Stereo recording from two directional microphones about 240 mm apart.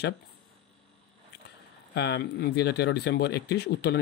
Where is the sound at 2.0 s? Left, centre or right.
Left.